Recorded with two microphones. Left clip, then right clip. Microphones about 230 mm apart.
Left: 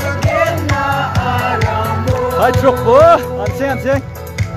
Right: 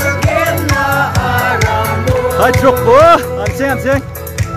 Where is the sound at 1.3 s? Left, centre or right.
Right.